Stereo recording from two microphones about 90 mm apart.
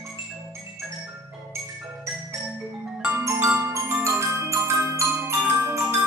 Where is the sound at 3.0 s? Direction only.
30° right (ahead or behind).